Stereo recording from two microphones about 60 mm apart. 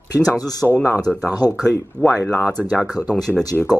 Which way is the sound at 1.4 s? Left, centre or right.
Left.